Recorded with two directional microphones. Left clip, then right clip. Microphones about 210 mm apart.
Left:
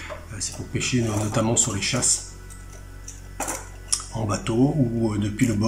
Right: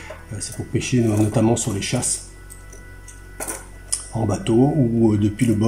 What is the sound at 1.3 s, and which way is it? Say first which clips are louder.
Speech: right 3 dB; 15° right (ahead or behind).